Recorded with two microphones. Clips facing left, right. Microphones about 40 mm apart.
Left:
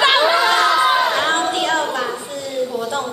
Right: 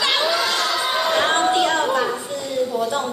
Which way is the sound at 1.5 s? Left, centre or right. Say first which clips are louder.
Right 1 dB; centre.